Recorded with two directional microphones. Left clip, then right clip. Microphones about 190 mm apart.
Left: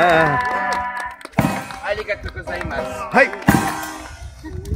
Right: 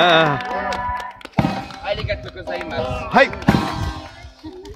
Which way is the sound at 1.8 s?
10° left (ahead or behind).